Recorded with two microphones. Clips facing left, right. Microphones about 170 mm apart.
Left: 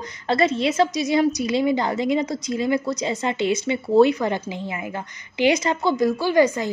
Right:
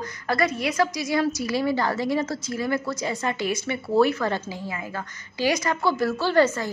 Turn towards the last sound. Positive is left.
turn(degrees=15)  # may be behind; listen again after turning